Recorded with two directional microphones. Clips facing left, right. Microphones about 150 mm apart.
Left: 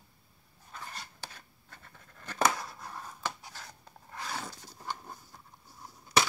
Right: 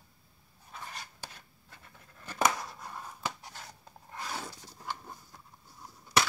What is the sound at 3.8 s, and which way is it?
Filing, 10° right (ahead or behind).